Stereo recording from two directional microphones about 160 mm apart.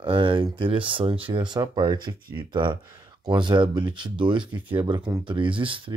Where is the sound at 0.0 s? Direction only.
30° right (ahead or behind).